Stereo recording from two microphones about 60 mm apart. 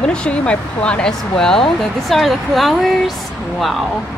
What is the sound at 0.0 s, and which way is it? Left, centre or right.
Speech, centre.